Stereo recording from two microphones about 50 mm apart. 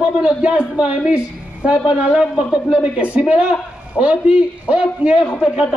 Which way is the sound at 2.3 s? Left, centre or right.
Centre.